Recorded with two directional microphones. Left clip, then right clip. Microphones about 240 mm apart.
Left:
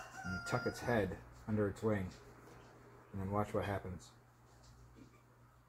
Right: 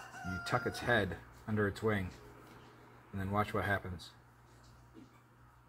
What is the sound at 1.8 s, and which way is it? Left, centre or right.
Speech, right.